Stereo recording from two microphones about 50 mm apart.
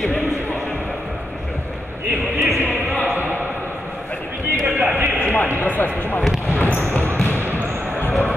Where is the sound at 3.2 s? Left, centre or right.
Right.